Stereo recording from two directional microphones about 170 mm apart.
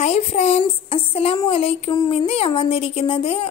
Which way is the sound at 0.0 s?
40° left (ahead or behind).